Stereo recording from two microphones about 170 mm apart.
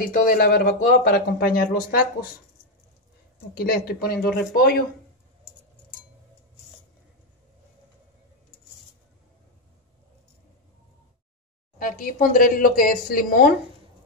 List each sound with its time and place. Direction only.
0.1 s speech: 55° left (ahead or behind)
3.3 s speech: 65° left (ahead or behind)
11.8 s speech: 55° left (ahead or behind)